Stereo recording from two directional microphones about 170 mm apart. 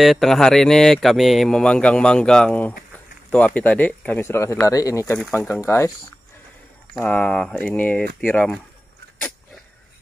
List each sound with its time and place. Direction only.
0.0 s speech: centre (ahead or behind)